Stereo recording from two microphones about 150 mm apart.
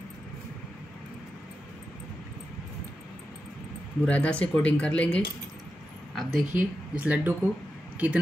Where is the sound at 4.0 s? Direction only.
10° left (ahead or behind).